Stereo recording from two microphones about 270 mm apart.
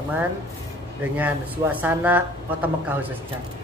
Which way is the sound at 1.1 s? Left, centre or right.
Centre.